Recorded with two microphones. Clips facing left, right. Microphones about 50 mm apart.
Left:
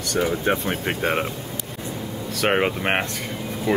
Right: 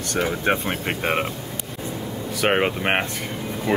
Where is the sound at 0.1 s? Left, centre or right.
Right.